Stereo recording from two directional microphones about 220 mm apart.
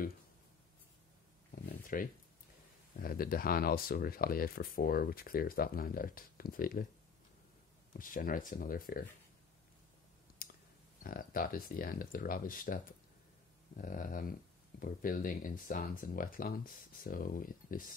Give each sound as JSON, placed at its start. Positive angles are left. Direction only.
{"t": 1.5, "sound": "a sound", "side_deg": 40}
{"t": 3.0, "sound": "speech", "side_deg": 40}
{"t": 7.9, "sound": "speech", "side_deg": 40}
{"t": 10.4, "sound": "clicking", "side_deg": 40}
{"t": 11.1, "sound": "speech", "side_deg": 40}